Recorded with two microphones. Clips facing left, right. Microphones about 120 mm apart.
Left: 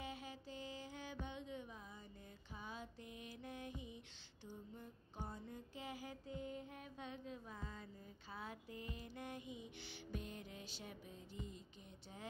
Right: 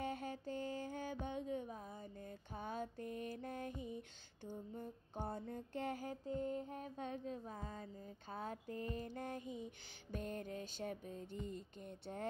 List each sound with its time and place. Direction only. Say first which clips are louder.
0.0 s mantra: right 7 dB; 55° right (ahead or behind)
1.2 s music: right 7 dB; 45° right (ahead or behind)
2.2 s music: right 6 dB; 55° right (ahead or behind)